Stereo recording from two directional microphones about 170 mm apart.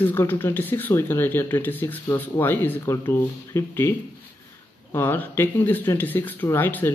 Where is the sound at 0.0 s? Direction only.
10° left (ahead or behind).